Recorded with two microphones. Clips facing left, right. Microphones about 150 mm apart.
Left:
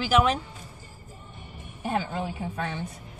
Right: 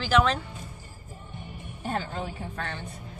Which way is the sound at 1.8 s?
10° left (ahead or behind).